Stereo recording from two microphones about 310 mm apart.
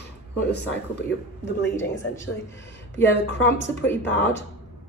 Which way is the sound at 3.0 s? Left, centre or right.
Left.